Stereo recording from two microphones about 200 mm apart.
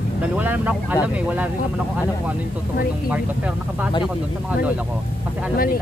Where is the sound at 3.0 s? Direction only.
5° right (ahead or behind).